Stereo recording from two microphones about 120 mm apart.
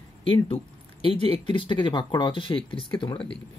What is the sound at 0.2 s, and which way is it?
Speech, 50° left (ahead or behind).